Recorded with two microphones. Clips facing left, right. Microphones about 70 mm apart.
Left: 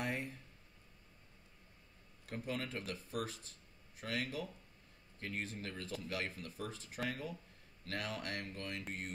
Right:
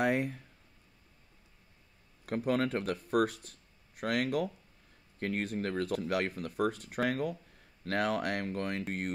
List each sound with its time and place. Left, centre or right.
0.0 s speech: right
2.2 s speech: right